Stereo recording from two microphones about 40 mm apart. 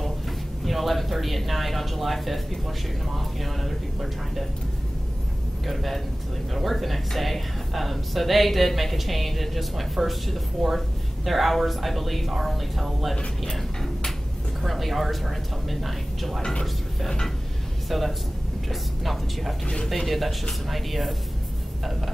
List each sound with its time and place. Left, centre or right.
0.7 s speech: centre
5.7 s speech: centre
13.4 s tick-tock: centre
14.6 s speech: centre
17.8 s a man's voice: centre
19.6 s speech: left
20.1 s speech: centre